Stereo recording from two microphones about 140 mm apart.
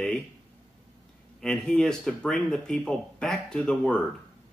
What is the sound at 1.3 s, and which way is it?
Speech, 5° left (ahead or behind).